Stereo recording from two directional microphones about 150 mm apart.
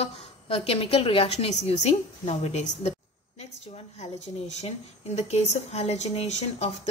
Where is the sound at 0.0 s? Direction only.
40° left (ahead or behind).